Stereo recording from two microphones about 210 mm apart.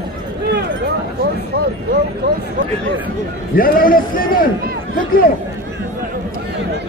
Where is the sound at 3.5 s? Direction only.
45° left (ahead or behind).